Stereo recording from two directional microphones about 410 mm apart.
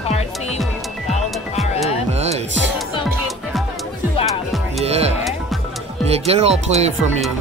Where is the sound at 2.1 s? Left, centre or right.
Centre.